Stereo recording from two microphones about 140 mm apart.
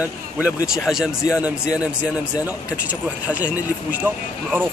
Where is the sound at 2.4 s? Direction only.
10° right (ahead or behind).